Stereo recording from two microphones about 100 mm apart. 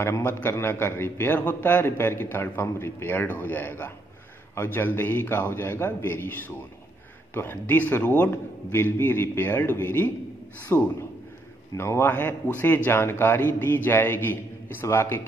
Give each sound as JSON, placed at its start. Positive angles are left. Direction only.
{"t": 0.0, "sound": "a man's voice", "side_deg": 25}